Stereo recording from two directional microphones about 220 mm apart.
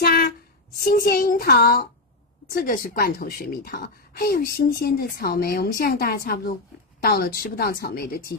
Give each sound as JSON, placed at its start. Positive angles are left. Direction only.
{"t": 0.0, "sound": "a sound", "side_deg": 40}
{"t": 0.7, "sound": "child singing", "side_deg": 40}
{"t": 2.5, "sound": "a woman's voice", "side_deg": 40}